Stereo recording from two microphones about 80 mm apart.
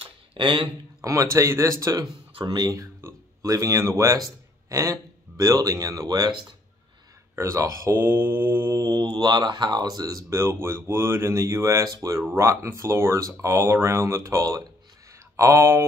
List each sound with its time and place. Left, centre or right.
0.0 s a sound: right
1.0 s speech: right
2.3 s speech: right
3.0 s a sound: right
4.6 s speech: right
7.3 s speech: right
8.9 s speech: right
10.3 s speech: right